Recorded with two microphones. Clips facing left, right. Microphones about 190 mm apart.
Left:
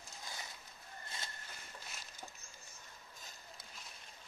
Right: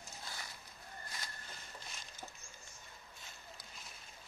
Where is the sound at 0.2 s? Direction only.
15° left (ahead or behind).